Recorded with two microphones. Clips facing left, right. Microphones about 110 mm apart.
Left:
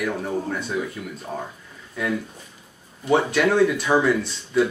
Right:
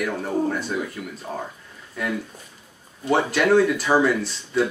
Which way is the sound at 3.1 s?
Centre (ahead or behind).